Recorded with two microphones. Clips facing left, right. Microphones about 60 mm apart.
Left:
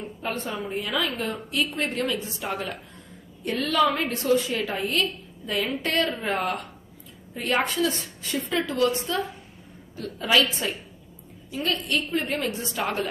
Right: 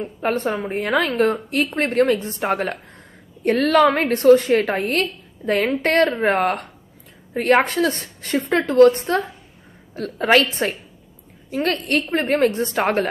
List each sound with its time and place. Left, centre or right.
0.0 s a woman's voice: right